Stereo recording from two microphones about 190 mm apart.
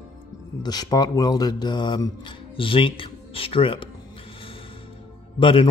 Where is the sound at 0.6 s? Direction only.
20° left (ahead or behind).